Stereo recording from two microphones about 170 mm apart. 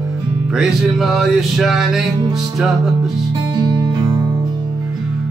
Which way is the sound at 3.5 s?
25° right (ahead or behind).